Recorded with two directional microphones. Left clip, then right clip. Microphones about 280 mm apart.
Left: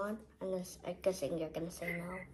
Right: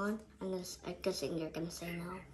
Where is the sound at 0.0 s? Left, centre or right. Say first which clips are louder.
Even; right.